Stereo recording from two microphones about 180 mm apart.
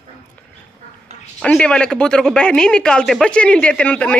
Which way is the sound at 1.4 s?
5° left (ahead or behind).